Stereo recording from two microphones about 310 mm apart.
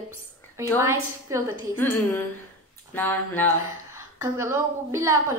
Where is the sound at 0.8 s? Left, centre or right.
Centre.